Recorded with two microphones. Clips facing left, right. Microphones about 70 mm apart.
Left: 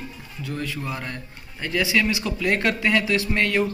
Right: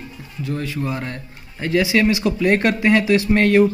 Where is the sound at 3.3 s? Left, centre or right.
Right.